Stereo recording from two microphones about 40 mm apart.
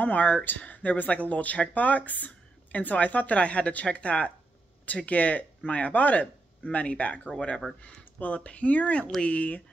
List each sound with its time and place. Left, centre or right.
0.0 s speech: left
8.0 s a sound: left
8.5 s speech: left